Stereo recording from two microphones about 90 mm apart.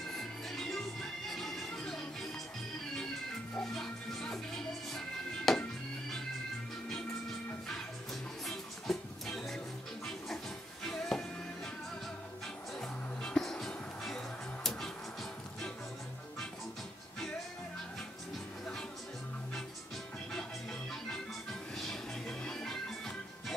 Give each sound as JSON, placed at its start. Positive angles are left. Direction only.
{"t": 0.1, "sound": "music", "side_deg": 5}
{"t": 3.5, "sound": "music", "side_deg": 5}
{"t": 8.5, "sound": "music", "side_deg": 5}
{"t": 13.2, "sound": "music", "side_deg": 5}
{"t": 22.4, "sound": "music", "side_deg": 10}